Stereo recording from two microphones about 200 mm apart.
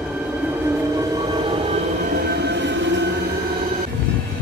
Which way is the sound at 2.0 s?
45° right (ahead or behind).